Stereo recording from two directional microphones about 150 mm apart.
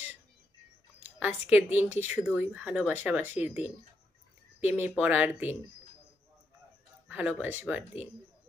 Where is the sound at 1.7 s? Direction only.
50° left (ahead or behind).